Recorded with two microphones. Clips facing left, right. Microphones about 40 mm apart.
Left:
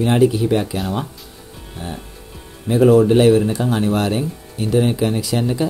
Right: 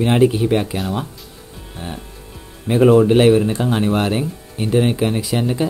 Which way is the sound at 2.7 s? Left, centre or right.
Right.